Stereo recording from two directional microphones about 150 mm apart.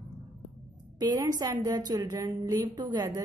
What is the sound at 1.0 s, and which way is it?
A woman's voice, 25° right (ahead or behind).